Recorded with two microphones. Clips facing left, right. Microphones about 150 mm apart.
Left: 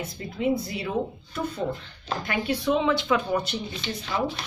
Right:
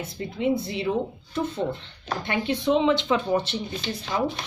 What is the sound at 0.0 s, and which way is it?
Speech, 25° right (ahead or behind).